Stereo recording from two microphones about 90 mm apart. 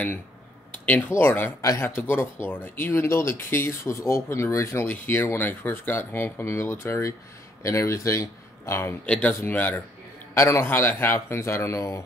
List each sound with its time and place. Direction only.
0.8 s speech: 20° left (ahead or behind)
1.6 s speech: 35° left (ahead or behind)
4.8 s a man's voice: 20° left (ahead or behind)
9.0 s speech: 15° left (ahead or behind)
10.3 s a man's voice: 30° left (ahead or behind)